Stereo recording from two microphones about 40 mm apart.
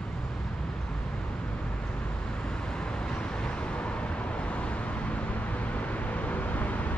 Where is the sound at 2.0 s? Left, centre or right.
Left.